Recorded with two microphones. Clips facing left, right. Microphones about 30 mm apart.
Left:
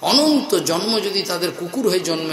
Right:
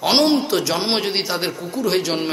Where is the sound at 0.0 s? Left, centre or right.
Centre.